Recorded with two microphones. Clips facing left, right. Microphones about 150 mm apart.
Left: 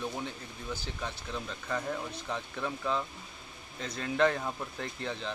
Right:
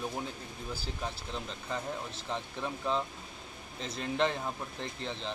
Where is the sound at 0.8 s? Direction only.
30° right (ahead or behind).